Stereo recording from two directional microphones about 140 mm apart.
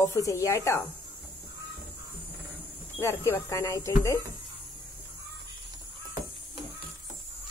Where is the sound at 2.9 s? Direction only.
15° left (ahead or behind).